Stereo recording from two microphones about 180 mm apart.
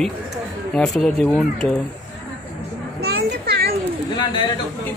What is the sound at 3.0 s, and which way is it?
Children playing, 60° right (ahead or behind).